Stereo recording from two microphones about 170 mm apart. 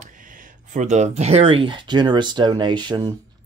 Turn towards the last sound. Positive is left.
turn(degrees=-25)  # may be behind; listen again after turning